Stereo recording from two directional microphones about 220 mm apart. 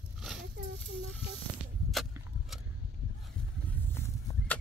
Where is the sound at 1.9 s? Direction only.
Centre (ahead or behind).